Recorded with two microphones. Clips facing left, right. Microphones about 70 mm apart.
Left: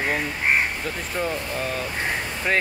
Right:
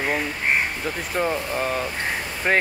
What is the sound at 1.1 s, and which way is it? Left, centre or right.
Speech, centre.